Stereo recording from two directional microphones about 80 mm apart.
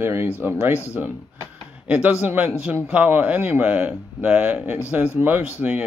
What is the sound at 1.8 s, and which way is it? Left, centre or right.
A man's voice, centre.